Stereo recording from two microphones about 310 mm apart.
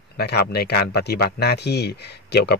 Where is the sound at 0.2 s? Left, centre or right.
Left.